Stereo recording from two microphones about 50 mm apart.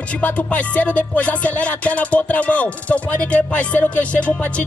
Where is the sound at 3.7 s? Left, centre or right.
Left.